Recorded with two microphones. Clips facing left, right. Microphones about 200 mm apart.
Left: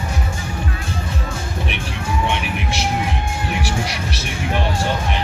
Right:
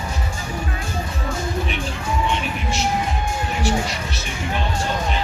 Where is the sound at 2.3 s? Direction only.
70° left (ahead or behind).